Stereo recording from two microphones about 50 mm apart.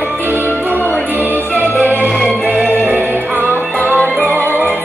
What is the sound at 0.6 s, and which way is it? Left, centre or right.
Music, right.